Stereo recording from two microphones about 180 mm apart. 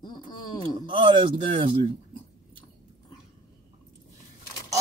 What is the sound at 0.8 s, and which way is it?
Speech, 25° right (ahead or behind).